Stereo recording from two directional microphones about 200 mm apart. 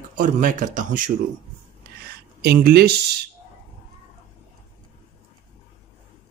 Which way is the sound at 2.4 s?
50° right (ahead or behind).